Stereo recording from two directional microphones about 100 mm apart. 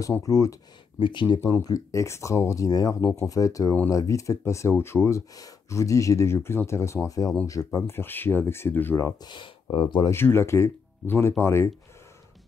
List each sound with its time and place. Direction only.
0.2 s speech: 35° left (ahead or behind)
0.9 s speech: 55° left (ahead or behind)
1.4 s speech: 35° left (ahead or behind)
8.9 s speech: 35° left (ahead or behind)
9.3 s speech: 50° left (ahead or behind)
10.0 s speech: 25° left (ahead or behind)